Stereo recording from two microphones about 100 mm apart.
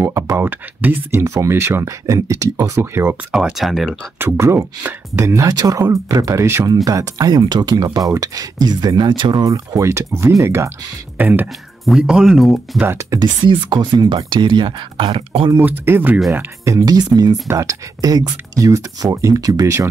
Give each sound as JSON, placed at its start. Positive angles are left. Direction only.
{"t": 0.0, "sound": "speech", "side_deg": -30}
{"t": 0.5, "sound": "speech", "side_deg": -20}
{"t": 3.3, "sound": "speech", "side_deg": -5}
{"t": 4.2, "sound": "speech", "side_deg": -25}
{"t": 11.8, "sound": "speech", "side_deg": -5}
{"t": 12.8, "sound": "speech", "side_deg": -30}
{"t": 13.2, "sound": "speech", "side_deg": -50}
{"t": 15.0, "sound": "speech", "side_deg": -65}
{"t": 15.6, "sound": "speech", "side_deg": -20}
{"t": 16.3, "sound": "speech", "side_deg": -30}